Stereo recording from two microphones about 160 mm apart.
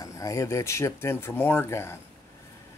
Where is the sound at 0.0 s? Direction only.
20° left (ahead or behind).